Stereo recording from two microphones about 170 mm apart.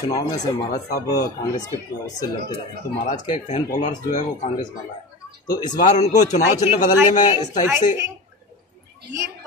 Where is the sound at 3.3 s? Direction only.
45° left (ahead or behind).